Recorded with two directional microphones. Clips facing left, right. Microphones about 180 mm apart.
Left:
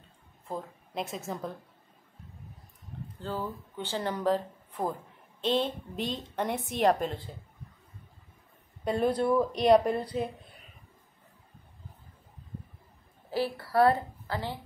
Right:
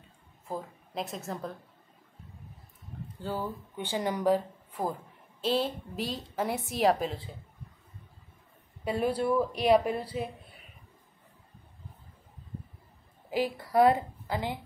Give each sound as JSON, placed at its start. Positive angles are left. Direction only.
{"t": 0.5, "sound": "a woman's voice", "side_deg": 0}
{"t": 3.2, "sound": "a woman's voice", "side_deg": -10}
{"t": 8.8, "sound": "a woman's voice", "side_deg": -5}
{"t": 13.3, "sound": "a woman's voice", "side_deg": -15}